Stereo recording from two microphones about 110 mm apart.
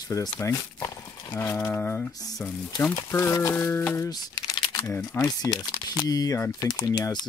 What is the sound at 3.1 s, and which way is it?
Speech, 30° left (ahead or behind).